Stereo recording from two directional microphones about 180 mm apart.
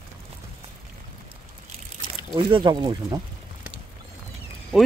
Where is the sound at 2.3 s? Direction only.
30° right (ahead or behind).